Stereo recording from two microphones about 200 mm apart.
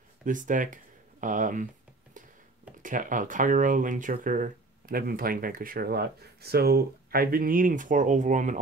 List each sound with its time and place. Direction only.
0.2 s speech: 40° right (ahead or behind)
2.8 s speech: 40° right (ahead or behind)